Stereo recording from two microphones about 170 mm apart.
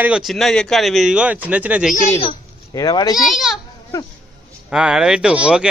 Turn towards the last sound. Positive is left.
turn(degrees=-5)  # may be behind; listen again after turning